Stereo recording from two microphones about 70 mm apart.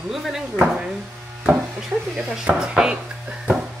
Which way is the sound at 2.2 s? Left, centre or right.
Centre.